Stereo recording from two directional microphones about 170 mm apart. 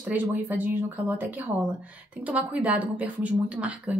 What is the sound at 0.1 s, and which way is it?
A woman's voice, 10° right (ahead or behind).